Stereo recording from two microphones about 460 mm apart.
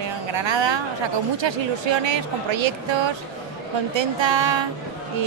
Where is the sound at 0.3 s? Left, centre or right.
Right.